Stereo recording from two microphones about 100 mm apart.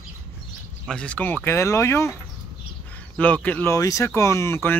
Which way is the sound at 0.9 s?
10° left (ahead or behind).